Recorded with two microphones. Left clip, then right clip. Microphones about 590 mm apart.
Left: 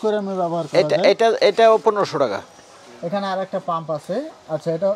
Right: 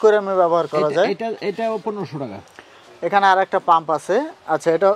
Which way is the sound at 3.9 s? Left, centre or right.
Right.